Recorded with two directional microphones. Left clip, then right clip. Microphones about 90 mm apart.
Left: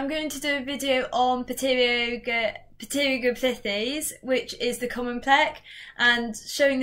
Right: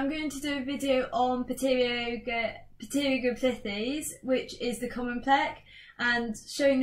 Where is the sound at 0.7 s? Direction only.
20° left (ahead or behind).